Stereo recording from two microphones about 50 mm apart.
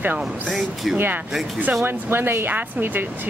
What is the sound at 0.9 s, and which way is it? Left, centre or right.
Speech, right.